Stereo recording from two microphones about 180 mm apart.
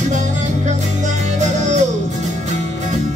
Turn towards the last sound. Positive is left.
turn(degrees=-40)  # may be behind; listen again after turning